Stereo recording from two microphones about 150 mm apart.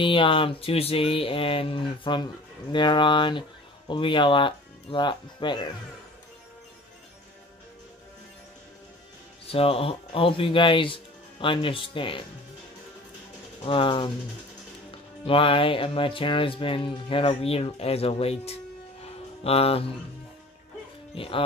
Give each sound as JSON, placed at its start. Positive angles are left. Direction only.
{"t": 0.0, "sound": "speech", "side_deg": 35}
{"t": 9.5, "sound": "speech", "side_deg": 40}
{"t": 13.6, "sound": "speech", "side_deg": 35}
{"t": 15.2, "sound": "speech", "side_deg": 35}
{"t": 19.0, "sound": "music", "side_deg": 40}
{"t": 21.1, "sound": "speech", "side_deg": 35}